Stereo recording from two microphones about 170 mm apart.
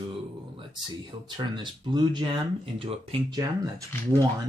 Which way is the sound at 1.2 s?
25° right (ahead or behind).